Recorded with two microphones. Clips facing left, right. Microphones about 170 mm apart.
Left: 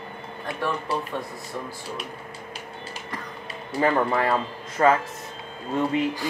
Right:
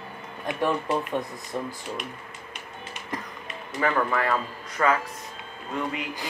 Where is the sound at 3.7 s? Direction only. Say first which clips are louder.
Left 3 dB; 30° left (ahead or behind).